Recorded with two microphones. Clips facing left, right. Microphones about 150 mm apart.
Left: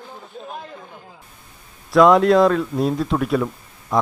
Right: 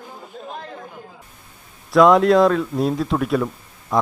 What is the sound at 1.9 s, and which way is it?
Speech, centre (ahead or behind).